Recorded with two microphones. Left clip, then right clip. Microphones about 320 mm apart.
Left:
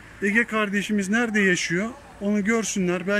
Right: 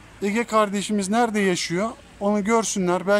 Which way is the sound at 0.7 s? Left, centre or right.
Right.